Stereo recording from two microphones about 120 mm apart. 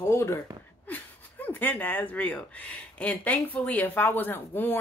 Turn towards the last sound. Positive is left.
turn(degrees=15)  # may be behind; listen again after turning